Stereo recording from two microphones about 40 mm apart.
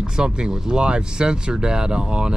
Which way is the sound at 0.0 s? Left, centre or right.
Centre.